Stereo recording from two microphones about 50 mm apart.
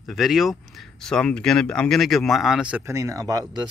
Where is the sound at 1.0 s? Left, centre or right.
Centre.